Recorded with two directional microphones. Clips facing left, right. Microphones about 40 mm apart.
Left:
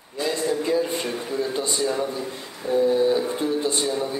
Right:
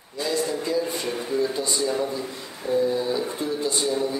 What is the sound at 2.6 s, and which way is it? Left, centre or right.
Speech, centre.